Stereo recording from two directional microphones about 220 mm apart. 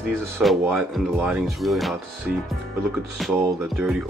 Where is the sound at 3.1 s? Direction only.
Centre (ahead or behind).